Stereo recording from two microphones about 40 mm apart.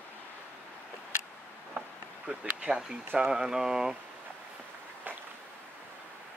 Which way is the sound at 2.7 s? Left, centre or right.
Right.